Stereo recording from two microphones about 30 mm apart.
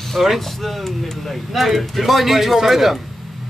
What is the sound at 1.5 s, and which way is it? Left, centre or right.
A man's voice, centre.